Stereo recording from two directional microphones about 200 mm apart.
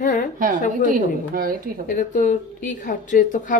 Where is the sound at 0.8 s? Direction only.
45° right (ahead or behind).